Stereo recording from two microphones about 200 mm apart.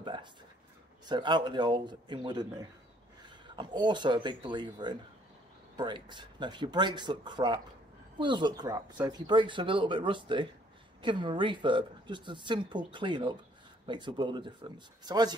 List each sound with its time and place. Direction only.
0.0 s speech: 25° right (ahead or behind)